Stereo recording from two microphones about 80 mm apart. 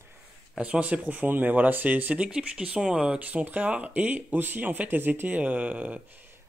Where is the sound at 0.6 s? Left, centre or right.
Centre.